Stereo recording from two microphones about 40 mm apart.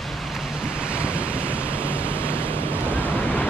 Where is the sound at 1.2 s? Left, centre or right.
Left.